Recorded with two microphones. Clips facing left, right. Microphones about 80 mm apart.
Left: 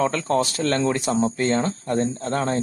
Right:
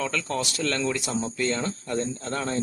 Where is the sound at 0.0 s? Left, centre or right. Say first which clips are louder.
Left 7 dB; left.